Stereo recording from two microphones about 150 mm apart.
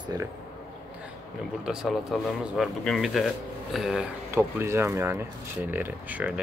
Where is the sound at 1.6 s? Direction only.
5° right (ahead or behind).